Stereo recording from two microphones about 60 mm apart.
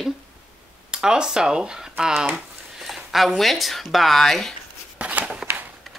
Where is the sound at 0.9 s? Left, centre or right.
Centre.